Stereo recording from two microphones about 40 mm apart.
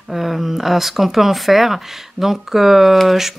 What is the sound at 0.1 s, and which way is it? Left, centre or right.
A woman's voice, centre.